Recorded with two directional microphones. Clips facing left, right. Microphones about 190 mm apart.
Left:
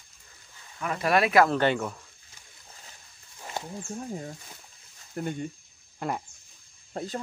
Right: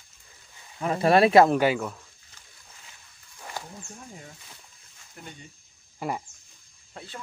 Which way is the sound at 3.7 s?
35° left (ahead or behind).